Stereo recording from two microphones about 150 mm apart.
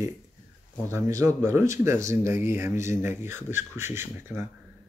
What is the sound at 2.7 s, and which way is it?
Speech, 55° left (ahead or behind).